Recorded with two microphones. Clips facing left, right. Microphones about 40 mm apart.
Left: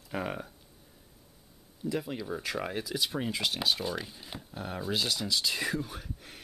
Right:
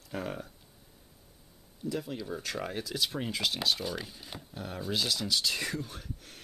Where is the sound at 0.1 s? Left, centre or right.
Centre.